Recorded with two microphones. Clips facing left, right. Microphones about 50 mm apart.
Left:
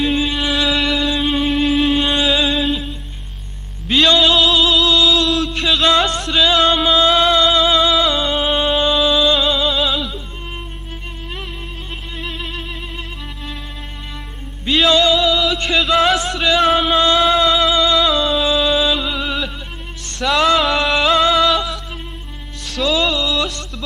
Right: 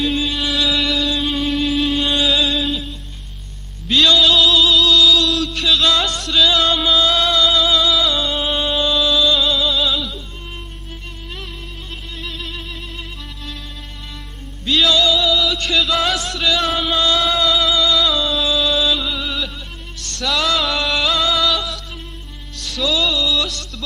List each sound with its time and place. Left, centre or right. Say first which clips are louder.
0.1 s music: left 2 dB; centre
3.8 s a sound: left 1 dB; left
5.0 s a sound: even; centre
5.8 s music: left 3 dB; left
12.2 s music: left 3 dB; left
14.9 s music: left 4 dB; centre
16.4 s music: left 5 dB; left; by 22.8 s centre
22.8 s music: left 2 dB; left
23.2 s a sound: left 1 dB; centre